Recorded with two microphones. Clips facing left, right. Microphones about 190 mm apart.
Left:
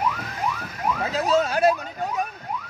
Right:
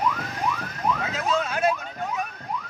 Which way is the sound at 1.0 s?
35° left (ahead or behind).